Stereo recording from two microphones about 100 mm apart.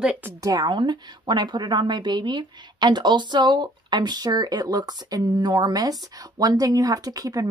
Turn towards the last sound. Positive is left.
turn(degrees=-35)  # may be behind; listen again after turning